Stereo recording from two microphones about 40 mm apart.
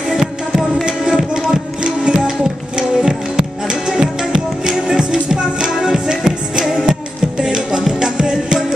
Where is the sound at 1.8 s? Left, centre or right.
Centre.